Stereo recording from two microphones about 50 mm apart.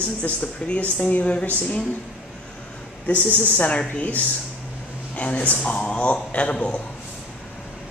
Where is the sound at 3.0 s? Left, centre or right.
Left.